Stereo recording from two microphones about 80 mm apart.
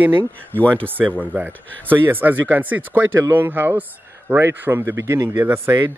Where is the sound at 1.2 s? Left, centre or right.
Right.